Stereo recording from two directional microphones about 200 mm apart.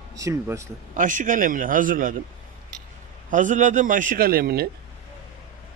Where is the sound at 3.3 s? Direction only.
40° right (ahead or behind).